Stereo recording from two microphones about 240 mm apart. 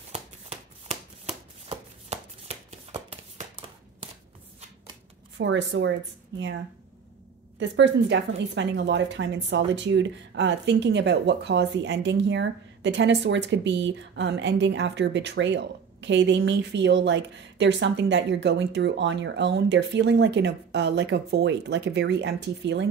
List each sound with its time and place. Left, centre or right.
0.1 s shuffling cards: right
5.4 s speech: right
7.5 s speech: right